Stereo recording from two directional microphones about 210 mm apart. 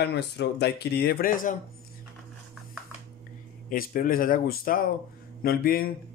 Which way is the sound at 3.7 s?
45° left (ahead or behind).